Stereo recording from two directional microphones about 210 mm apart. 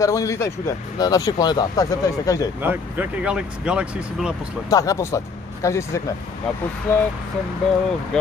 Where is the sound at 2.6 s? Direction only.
10° right (ahead or behind).